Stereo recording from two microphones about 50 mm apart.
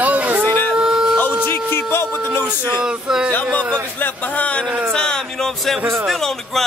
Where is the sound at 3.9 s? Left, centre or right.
Left.